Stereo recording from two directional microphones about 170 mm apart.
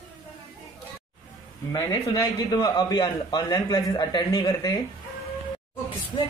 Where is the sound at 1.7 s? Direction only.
20° left (ahead or behind).